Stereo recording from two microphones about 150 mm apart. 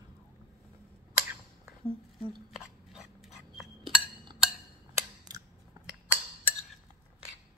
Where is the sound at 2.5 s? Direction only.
5° right (ahead or behind).